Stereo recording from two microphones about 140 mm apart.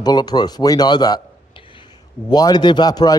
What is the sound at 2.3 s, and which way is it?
Speech, 30° left (ahead or behind).